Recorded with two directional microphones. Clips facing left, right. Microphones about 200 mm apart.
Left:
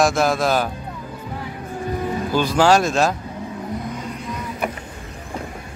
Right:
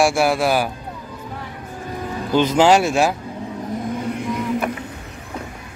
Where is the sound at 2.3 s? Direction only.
20° right (ahead or behind).